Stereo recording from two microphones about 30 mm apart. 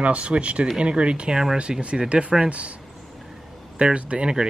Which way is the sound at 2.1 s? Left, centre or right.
Right.